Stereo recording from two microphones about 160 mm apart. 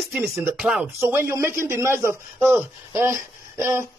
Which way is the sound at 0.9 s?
15° right (ahead or behind).